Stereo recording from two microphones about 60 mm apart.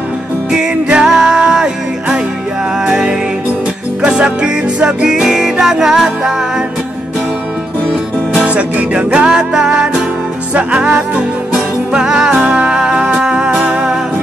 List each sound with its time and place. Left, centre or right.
1.0 s music: centre
4.0 s music: centre
8.3 s music: right
12.0 s music: centre
12.3 s music: right